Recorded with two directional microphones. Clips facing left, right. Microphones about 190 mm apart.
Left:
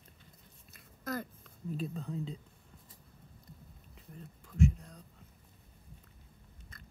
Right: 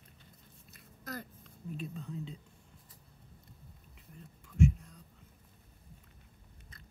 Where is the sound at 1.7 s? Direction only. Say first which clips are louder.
Left 3 dB; 35° left (ahead or behind).